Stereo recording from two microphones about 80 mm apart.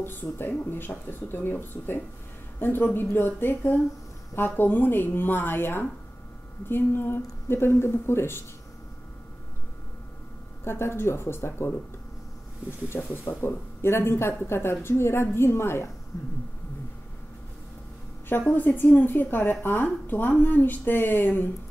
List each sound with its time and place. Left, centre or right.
0.0 s a woman's voice: left
10.6 s speech: left
12.9 s speech: left
18.5 s a woman's voice: left